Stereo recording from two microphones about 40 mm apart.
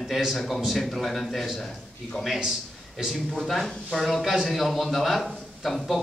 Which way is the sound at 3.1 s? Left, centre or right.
Centre.